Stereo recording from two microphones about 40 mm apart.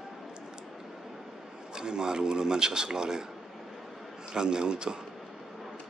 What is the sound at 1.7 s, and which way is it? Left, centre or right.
A man's voice, centre.